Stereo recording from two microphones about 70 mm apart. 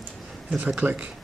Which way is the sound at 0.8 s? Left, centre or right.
Centre.